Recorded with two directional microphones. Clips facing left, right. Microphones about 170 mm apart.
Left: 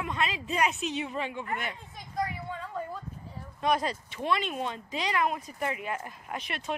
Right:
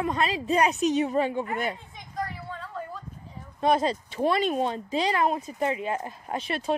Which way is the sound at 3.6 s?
30° right (ahead or behind).